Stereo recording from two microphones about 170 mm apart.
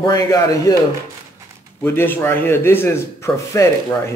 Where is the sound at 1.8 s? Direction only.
15° left (ahead or behind).